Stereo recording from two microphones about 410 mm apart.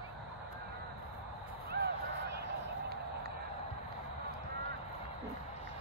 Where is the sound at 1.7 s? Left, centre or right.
Right.